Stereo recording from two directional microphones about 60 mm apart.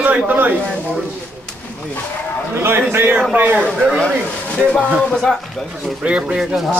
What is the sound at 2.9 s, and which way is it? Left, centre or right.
Speech, right.